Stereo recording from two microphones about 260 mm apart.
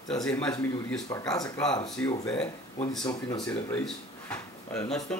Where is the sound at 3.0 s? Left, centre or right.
Centre.